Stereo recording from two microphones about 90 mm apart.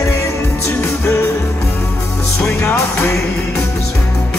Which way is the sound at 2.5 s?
30° left (ahead or behind).